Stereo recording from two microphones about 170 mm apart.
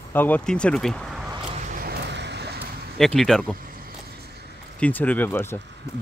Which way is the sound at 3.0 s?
Centre (ahead or behind).